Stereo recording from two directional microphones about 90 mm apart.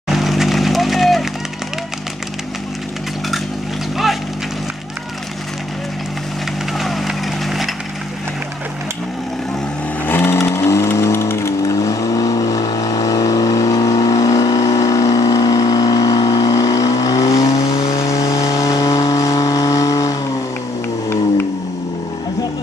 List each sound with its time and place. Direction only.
0.1 s vehicle: 5° right (ahead or behind)
6.8 s vehicle: centre (ahead or behind)
10.0 s vehicle: 25° left (ahead or behind); by 17.2 s 45° left (ahead or behind)
17.2 s vehicle: 90° left
17.5 s vehicle: 40° left (ahead or behind)